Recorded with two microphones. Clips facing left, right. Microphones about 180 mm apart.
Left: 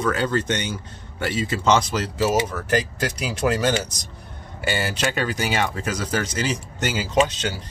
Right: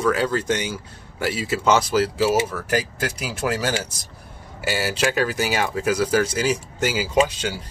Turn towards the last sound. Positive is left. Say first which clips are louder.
# even
turn(degrees=-10)  # may be behind; listen again after turning